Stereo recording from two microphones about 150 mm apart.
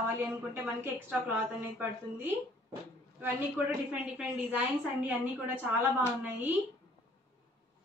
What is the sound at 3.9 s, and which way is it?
Speech, 5° right (ahead or behind).